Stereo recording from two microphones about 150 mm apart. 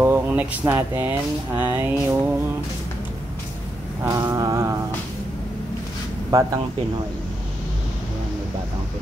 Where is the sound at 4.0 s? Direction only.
25° right (ahead or behind).